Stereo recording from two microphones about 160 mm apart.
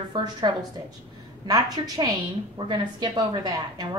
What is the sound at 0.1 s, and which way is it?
A woman's voice, 25° right (ahead or behind).